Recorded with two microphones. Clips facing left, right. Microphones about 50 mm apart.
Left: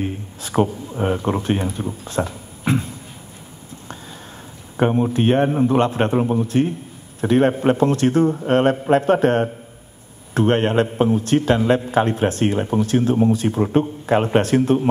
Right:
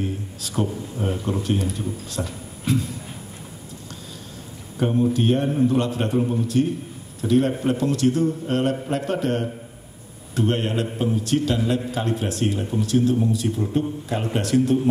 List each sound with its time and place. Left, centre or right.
0.0 s a man's voice: left
4.7 s a man's voice: left